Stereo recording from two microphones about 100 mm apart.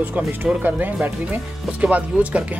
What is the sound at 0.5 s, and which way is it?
Speech, 15° right (ahead or behind).